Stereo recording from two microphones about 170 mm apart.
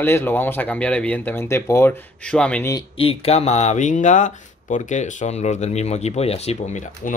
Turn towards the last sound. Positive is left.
turn(degrees=45)  # may be behind; listen again after turning